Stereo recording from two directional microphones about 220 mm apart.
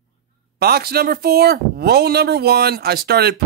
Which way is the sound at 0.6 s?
45° right (ahead or behind).